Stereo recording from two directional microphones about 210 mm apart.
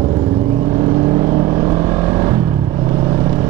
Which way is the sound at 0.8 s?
20° right (ahead or behind).